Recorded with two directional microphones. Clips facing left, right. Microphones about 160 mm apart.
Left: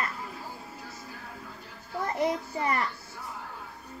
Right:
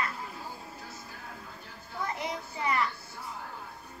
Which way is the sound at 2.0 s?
45° left (ahead or behind).